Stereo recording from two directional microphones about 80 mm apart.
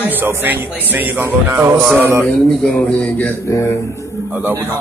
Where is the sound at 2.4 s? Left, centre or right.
Centre.